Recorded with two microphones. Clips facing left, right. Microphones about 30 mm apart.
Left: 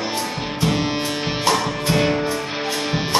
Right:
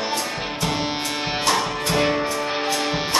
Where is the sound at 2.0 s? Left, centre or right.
Centre.